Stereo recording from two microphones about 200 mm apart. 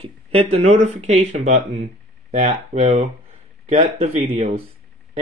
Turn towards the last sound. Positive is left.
turn(degrees=-30)  # may be behind; listen again after turning